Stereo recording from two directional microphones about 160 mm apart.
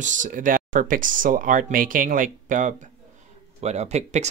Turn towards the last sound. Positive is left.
turn(degrees=-45)  # may be behind; listen again after turning